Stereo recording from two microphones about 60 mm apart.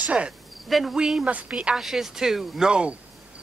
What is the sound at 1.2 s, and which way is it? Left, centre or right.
Speech, right.